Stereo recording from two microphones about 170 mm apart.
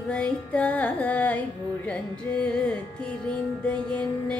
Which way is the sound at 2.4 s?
5° left (ahead or behind).